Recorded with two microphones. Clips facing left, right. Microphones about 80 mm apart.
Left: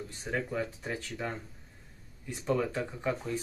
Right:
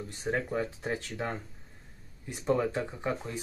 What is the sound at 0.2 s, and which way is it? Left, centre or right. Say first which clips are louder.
Speech: right 3 dB; right.